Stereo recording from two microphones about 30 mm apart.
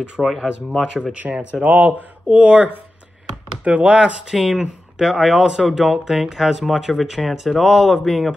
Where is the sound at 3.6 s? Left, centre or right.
Right.